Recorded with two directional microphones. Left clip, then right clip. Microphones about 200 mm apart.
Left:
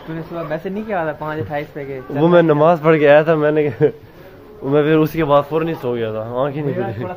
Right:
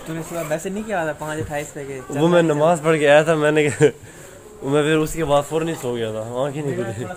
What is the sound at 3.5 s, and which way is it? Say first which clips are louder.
Speech: even; 20° right (ahead or behind).